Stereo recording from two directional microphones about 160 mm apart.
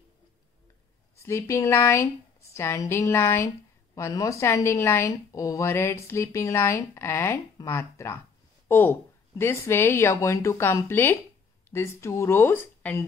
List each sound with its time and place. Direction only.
1.2 s a woman's voice: 15° left (ahead or behind)